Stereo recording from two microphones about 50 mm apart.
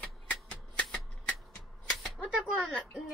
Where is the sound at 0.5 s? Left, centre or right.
Left.